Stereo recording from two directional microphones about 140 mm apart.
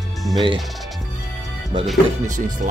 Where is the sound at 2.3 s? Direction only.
65° right (ahead or behind).